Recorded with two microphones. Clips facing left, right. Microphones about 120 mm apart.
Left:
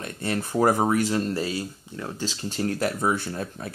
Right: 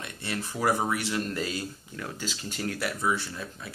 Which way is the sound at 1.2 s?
30° left (ahead or behind).